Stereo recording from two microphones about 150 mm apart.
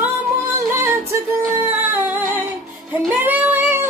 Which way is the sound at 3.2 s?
15° right (ahead or behind).